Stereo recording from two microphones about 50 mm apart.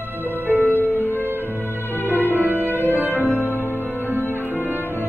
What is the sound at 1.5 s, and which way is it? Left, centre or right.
Music, left.